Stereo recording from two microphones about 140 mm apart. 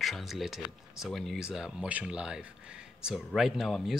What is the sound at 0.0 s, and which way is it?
Speech, centre (ahead or behind).